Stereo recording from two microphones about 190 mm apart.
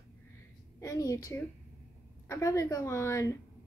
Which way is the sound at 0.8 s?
15° left (ahead or behind).